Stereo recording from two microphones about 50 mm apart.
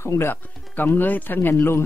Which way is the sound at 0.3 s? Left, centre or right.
Left.